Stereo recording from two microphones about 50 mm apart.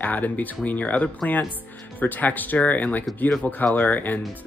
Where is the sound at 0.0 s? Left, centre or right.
Left.